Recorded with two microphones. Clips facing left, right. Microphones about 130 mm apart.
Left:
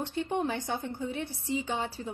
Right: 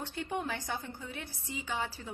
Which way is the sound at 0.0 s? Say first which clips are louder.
Left 6 dB; 25° left (ahead or behind).